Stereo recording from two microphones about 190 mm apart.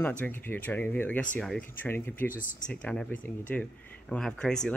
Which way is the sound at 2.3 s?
45° left (ahead or behind).